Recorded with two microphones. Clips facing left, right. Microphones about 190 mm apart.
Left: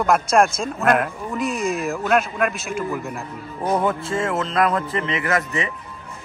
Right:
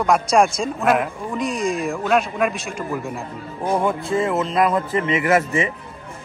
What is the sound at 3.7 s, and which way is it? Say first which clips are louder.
Speech: right 1 dB; 10° right (ahead or behind).